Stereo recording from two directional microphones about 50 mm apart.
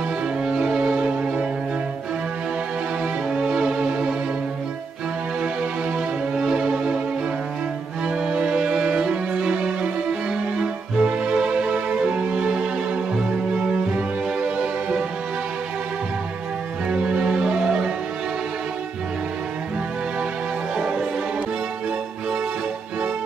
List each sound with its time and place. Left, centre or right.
0.5 s music: right
3.3 s music: centre
6.3 s music: centre
8.3 s music: centre
10.6 s music: centre
16.9 s music: centre